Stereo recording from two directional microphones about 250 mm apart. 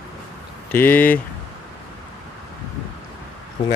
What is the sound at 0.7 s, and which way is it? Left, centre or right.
Speech, centre.